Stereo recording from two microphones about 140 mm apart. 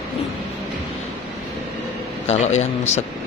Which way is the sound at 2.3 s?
55° left (ahead or behind).